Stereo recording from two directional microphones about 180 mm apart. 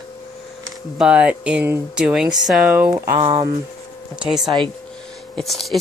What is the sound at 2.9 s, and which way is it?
Speech, 25° right (ahead or behind).